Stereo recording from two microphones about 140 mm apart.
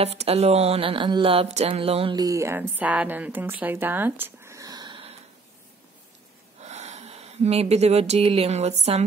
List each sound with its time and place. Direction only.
0.0 s speech: 45° right (ahead or behind)
1.7 s a sound: 40° right (ahead or behind)
2.1 s speech: 25° right (ahead or behind)
2.8 s speech: 10° right (ahead or behind); by 5.1 s 35° right (ahead or behind)
6.6 s speech: 50° right (ahead or behind)